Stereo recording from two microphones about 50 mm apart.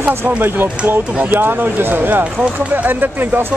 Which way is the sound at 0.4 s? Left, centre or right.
Right.